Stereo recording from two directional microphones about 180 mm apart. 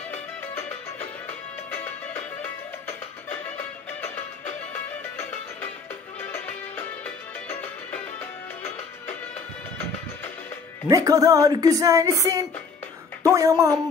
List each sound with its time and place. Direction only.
3.3 s music: 10° left (ahead or behind)
10.9 s a woman's voice: 20° right (ahead or behind)